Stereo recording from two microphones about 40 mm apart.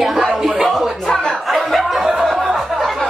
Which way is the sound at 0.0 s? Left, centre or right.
Centre.